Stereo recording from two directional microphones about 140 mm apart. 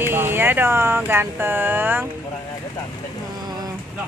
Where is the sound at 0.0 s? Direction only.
15° right (ahead or behind).